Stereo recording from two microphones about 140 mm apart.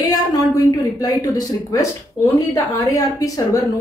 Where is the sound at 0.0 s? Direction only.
25° left (ahead or behind).